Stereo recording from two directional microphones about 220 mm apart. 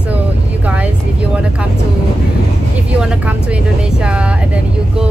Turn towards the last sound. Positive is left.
turn(degrees=-5)  # may be behind; listen again after turning